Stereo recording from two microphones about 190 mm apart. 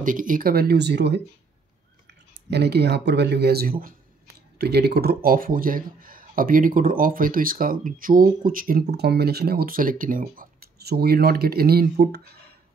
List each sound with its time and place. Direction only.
0.0 s speech: 45° right (ahead or behind); by 1.2 s 60° right (ahead or behind)
2.5 s speech: 60° right (ahead or behind)